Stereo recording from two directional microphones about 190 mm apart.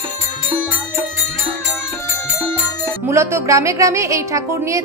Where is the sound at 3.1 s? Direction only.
15° right (ahead or behind).